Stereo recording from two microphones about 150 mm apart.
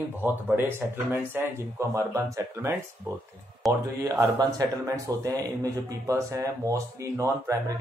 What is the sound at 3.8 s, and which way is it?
Speech, 25° right (ahead or behind).